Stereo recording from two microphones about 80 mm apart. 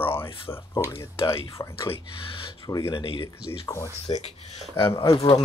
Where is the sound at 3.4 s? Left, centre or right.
Left.